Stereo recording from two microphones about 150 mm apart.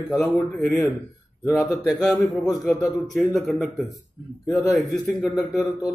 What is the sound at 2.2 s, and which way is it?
Speech, 25° left (ahead or behind).